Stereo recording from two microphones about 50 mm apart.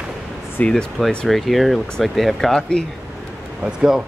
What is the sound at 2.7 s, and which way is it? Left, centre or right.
Speech, centre.